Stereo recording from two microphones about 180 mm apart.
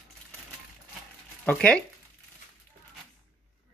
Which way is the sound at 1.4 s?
5° left (ahead or behind).